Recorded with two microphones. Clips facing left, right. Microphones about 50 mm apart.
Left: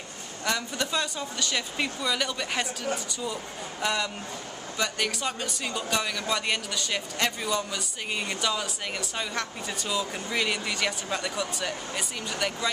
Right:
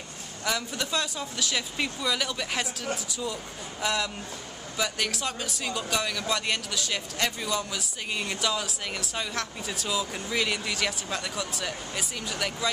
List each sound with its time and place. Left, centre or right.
0.5 s speech: centre